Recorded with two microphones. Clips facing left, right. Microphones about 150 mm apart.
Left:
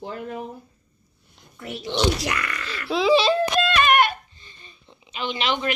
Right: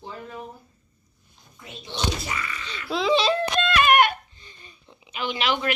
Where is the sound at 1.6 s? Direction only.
85° left.